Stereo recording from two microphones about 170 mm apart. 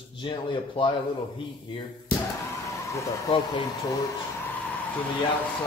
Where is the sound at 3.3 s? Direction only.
25° left (ahead or behind).